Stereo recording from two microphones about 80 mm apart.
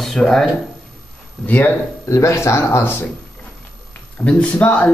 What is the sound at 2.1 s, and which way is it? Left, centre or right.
Speech, left.